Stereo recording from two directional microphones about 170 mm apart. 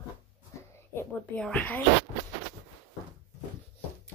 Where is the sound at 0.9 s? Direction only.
15° left (ahead or behind).